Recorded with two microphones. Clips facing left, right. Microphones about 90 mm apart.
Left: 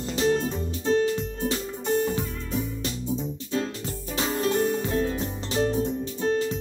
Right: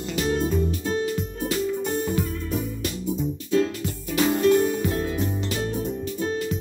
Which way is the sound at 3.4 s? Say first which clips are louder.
Right 8 dB; 35° left (ahead or behind).